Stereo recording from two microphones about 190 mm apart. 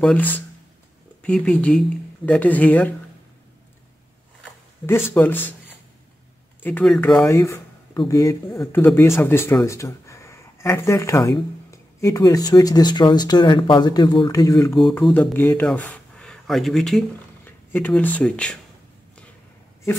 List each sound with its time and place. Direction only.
0.0 s speech: 10° left (ahead or behind)
5.1 s speech: 10° left (ahead or behind)
7.3 s a sound: 15° left (ahead or behind)
8.1 s speech: 15° left (ahead or behind)
14.8 s speech: centre (ahead or behind)